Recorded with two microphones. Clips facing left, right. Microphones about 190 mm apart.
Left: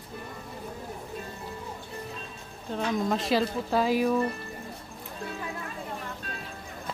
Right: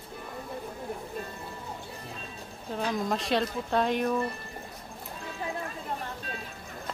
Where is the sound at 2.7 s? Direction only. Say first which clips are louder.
Left 2 dB; centre (ahead or behind).